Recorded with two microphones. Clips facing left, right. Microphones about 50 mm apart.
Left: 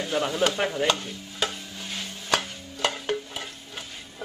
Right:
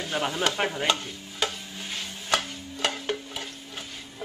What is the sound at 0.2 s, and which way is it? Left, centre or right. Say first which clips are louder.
Speech: left 1 dB; centre.